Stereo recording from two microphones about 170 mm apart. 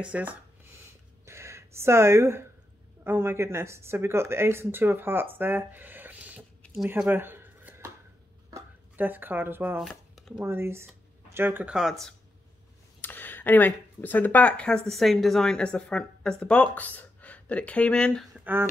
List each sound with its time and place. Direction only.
0.0 s speech: 10° right (ahead or behind)
1.2 s a sound: 15° right (ahead or behind)
3.0 s speech: 15° right (ahead or behind)
6.8 s a sound: 10° right (ahead or behind)
8.9 s speech: 10° right (ahead or behind)
9.8 s shuffling cards: centre (ahead or behind)
10.4 s speech: 15° right (ahead or behind)
13.0 s speech: 10° left (ahead or behind)
18.4 s speech: 10° right (ahead or behind)